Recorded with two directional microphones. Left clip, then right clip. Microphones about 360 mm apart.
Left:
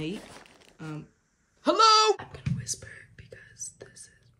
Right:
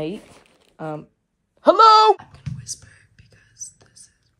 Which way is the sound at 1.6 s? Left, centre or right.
Centre.